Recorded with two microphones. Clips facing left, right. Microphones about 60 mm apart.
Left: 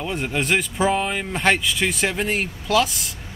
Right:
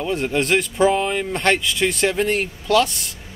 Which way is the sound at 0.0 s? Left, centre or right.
Centre.